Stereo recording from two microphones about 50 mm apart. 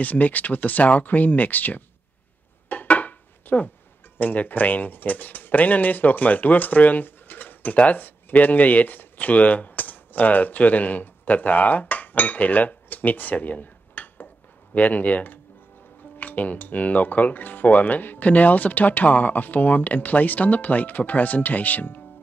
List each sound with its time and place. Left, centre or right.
0.0 s speech: left
2.7 s a sound: left
4.2 s speech: left